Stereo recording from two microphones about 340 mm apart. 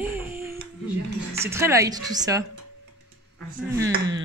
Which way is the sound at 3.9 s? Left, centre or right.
Right.